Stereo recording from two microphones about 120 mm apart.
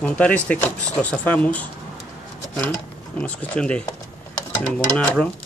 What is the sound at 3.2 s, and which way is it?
Speech, 15° left (ahead or behind).